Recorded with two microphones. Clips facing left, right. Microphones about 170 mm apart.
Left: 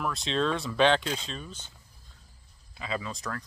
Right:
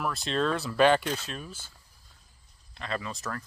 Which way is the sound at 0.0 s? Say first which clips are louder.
Even; centre (ahead or behind).